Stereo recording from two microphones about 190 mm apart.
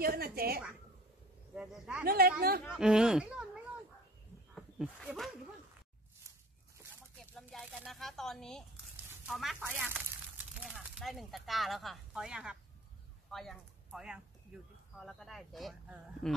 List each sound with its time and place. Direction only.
0.0 s a woman's voice: 55° right (ahead or behind)
1.5 s speech: 5° right (ahead or behind)
2.0 s a woman's voice: 50° right (ahead or behind)
2.7 s speech: 5° right (ahead or behind)
4.6 s speech: centre (ahead or behind)
7.2 s a sound: centre (ahead or behind)
9.3 s speech: centre (ahead or behind)